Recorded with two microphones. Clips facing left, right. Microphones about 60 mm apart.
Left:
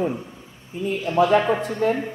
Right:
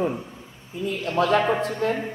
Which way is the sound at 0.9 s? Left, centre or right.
Centre.